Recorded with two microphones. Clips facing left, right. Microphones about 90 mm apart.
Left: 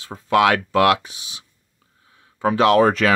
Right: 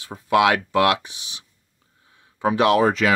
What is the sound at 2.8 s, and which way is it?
Speech, 45° left (ahead or behind).